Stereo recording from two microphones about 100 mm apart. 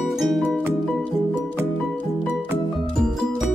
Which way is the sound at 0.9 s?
10° left (ahead or behind).